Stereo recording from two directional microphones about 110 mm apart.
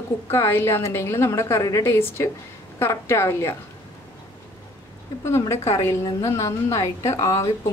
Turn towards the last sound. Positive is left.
turn(degrees=30)  # may be behind; listen again after turning